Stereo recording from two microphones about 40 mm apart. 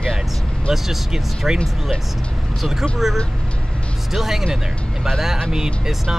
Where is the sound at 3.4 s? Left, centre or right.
Left.